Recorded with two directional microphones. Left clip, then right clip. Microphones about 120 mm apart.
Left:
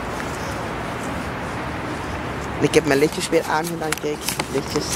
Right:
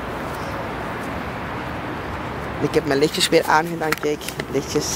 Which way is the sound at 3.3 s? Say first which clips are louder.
Right 3 dB; 45° right (ahead or behind).